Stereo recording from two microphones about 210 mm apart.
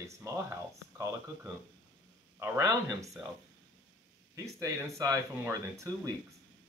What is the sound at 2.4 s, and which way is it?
Speech, 15° right (ahead or behind).